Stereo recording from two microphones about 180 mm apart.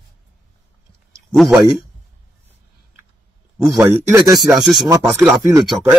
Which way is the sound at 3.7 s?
15° right (ahead or behind).